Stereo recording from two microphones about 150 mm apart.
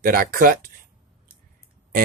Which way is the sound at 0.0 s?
70° right (ahead or behind).